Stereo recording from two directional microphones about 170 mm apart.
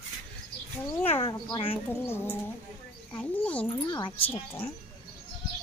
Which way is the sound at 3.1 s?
10° left (ahead or behind).